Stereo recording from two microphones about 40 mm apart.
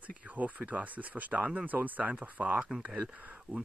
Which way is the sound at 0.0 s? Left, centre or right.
Right.